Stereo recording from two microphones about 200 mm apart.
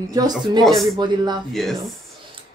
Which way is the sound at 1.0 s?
20° right (ahead or behind).